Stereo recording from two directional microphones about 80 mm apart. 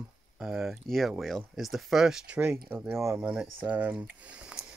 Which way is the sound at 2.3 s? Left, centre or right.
Right.